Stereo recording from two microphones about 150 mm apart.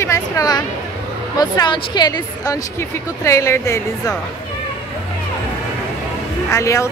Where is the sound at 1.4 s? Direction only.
30° left (ahead or behind).